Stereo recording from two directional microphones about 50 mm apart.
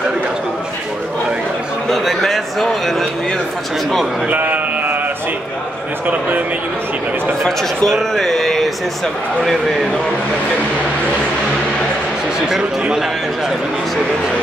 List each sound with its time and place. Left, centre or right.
1.9 s a man's voice: centre
4.3 s sheep: right
7.4 s speech: centre